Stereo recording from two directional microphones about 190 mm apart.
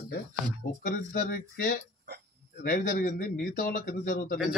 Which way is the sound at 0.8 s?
50° left (ahead or behind).